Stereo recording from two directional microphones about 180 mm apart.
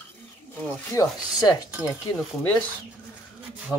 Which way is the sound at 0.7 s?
15° left (ahead or behind).